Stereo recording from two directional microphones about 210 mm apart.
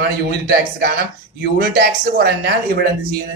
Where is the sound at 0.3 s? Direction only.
45° right (ahead or behind).